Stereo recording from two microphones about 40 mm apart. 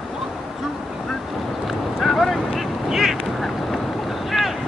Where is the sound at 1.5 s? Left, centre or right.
Centre.